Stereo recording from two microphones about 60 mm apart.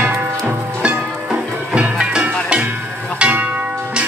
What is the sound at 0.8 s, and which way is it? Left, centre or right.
Music, centre.